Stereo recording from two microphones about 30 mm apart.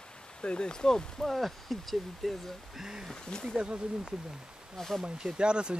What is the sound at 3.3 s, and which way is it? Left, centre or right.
Speech, left.